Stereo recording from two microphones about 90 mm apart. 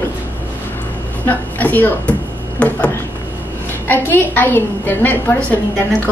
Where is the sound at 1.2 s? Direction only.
20° left (ahead or behind).